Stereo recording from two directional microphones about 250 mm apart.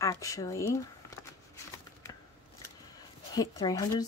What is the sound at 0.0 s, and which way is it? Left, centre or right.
Speech, centre.